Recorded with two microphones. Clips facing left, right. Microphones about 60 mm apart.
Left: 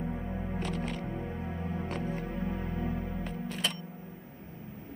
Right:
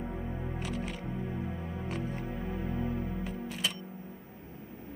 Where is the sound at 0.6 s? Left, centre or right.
Centre.